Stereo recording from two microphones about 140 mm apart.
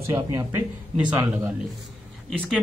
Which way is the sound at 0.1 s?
20° right (ahead or behind).